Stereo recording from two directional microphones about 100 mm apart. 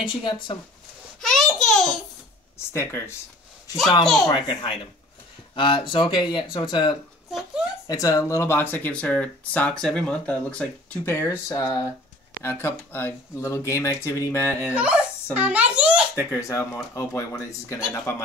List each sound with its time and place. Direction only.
0.0 s speech: 55° left (ahead or behind)
1.2 s a child's voice: 5° left (ahead or behind)
2.7 s speech: 25° left (ahead or behind)
4.0 s a child's voice: 5° left (ahead or behind)
4.3 s a child's voice: 50° left (ahead or behind)
7.2 s speech: 5° right (ahead or behind)
7.9 s speech: 35° left (ahead or behind); by 11.0 s 10° left (ahead or behind)
11.1 s speech: 30° left (ahead or behind)
12.4 s speech: 25° left (ahead or behind)
14.7 s a child's voice: 10° right (ahead or behind)
16.3 s speech: 30° left (ahead or behind)